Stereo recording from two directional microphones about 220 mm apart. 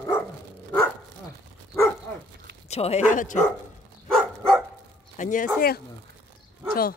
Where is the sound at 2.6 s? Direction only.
30° left (ahead or behind).